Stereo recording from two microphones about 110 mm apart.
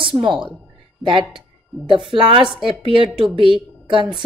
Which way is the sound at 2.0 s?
55° right (ahead or behind).